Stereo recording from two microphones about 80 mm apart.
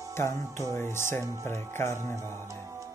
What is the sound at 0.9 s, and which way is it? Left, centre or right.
Mantra, left.